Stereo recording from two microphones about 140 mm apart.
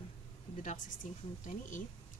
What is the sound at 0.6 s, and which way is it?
Speech, 70° left (ahead or behind).